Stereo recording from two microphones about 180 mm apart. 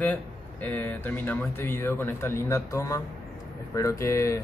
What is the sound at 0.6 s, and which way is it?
Speech, 10° left (ahead or behind).